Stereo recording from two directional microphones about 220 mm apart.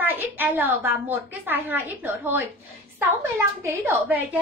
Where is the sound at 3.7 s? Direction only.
10° right (ahead or behind).